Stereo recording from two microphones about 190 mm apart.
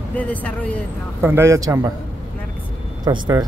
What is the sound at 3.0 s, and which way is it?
Speech, 20° right (ahead or behind).